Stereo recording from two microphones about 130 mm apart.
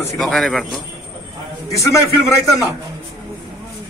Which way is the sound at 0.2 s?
Centre (ahead or behind).